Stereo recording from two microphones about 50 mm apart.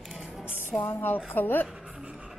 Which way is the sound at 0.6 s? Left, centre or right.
Left.